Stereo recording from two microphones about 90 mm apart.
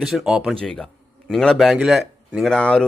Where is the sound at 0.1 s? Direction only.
10° right (ahead or behind).